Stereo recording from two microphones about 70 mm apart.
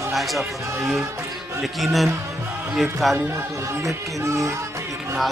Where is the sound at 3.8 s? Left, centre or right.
Right.